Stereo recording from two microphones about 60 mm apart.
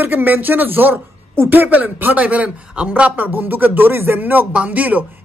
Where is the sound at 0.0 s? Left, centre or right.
Right.